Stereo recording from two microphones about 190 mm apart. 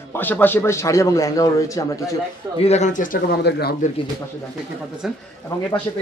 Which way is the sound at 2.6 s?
35° left (ahead or behind).